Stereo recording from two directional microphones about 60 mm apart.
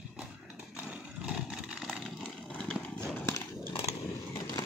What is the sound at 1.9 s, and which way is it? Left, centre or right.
Wood, centre.